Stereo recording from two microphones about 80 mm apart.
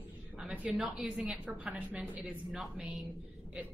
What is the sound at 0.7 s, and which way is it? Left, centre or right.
A woman's voice, centre.